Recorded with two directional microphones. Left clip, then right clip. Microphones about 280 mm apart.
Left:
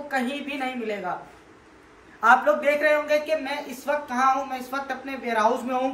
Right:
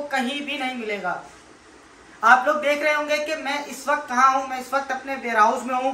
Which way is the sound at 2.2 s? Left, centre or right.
Centre.